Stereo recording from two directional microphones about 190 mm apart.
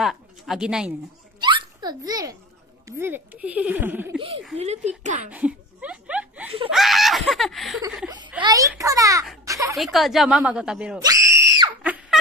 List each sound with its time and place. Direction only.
0.0 s speech: centre (ahead or behind)
1.4 s hiccup: 25° right (ahead or behind)
3.0 s a child's voice: 10° right (ahead or behind)
4.6 s speech: 35° right (ahead or behind)
5.3 s a sound: 5° right (ahead or behind)
6.7 s speech: centre (ahead or behind)
8.4 s a child's voice: 20° right (ahead or behind)
9.4 s a sound: 15° right (ahead or behind)
9.8 s a woman's voice: centre (ahead or behind)
11.0 s screaming: 15° right (ahead or behind)
11.8 s a sound: 10° right (ahead or behind)